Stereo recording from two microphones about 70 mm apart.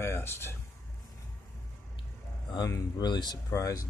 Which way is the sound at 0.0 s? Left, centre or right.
Left.